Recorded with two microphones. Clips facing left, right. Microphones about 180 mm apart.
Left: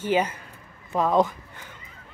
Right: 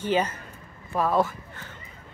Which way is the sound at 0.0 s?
10° left (ahead or behind).